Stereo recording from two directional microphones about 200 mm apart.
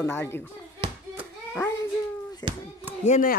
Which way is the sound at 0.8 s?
25° right (ahead or behind).